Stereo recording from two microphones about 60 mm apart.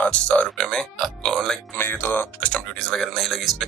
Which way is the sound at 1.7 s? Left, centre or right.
Left.